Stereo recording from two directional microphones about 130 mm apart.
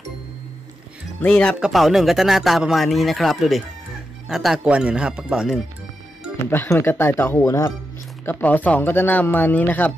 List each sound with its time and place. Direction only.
1.2 s speech: 10° left (ahead or behind)
6.5 s speech: 20° left (ahead or behind)